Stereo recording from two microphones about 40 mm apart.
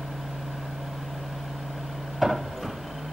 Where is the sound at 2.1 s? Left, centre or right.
Centre.